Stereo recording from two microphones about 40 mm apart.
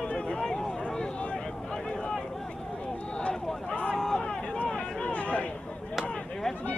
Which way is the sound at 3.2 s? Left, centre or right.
Left.